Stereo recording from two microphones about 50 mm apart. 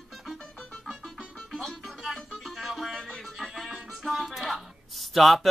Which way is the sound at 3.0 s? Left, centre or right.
Centre.